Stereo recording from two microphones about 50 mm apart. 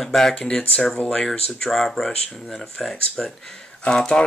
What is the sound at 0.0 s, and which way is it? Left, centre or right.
Speech, centre.